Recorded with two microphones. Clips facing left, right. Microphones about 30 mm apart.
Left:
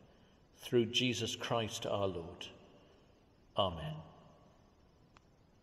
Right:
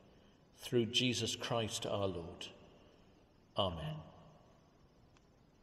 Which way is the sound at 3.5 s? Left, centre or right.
Centre.